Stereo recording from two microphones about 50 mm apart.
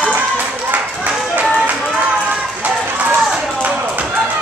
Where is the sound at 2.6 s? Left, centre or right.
Right.